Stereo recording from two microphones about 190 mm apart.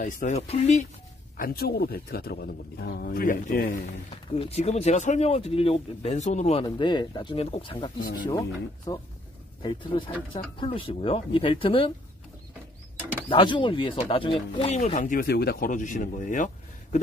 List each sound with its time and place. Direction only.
0.0 s speech: 40° left (ahead or behind)
1.3 s speech: 50° left (ahead or behind)
4.1 s speech: 35° left (ahead or behind)
6.6 s speech: 25° left (ahead or behind)
8.0 s speech: 55° left (ahead or behind)
8.3 s speech: 20° left (ahead or behind)
13.3 s speech: 25° left (ahead or behind); by 16.4 s 45° left (ahead or behind)